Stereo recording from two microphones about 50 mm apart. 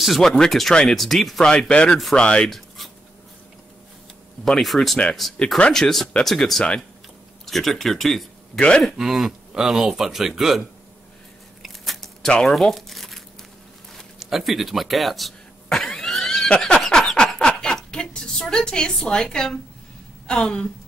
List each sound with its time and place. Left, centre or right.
0.0 s speech: centre
1.7 s speech: centre
2.4 s dog: centre
4.5 s speech: centre
8.5 s speech: left
8.9 s speech: centre
11.6 s biting: centre
12.4 s speech: centre
14.2 s speech: centre
15.9 s a sound: centre
17.4 s a woman's voice: centre